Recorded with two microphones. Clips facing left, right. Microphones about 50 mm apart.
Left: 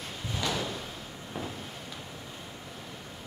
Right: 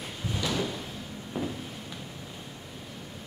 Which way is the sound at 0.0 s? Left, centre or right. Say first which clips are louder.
Right 1 dB; centre.